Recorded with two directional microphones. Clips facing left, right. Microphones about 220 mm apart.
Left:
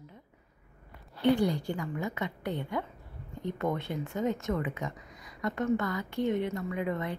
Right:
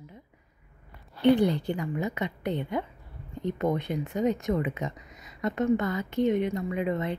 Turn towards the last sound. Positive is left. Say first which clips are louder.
# right 4 dB
turn(degrees=-20)  # may be behind; listen again after turning